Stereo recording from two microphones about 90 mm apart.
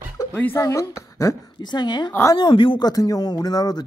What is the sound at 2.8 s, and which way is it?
Speech, 45° left (ahead or behind).